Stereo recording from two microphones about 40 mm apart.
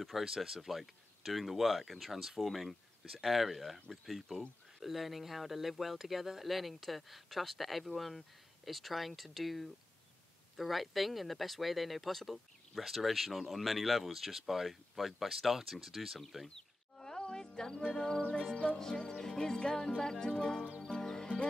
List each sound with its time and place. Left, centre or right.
0.0 s speech: centre
16.4 s music: centre